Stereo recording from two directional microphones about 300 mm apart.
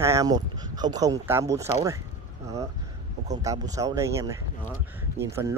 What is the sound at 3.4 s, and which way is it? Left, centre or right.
Speech, centre.